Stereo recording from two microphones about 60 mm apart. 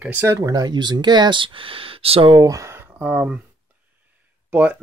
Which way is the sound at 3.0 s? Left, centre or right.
Right.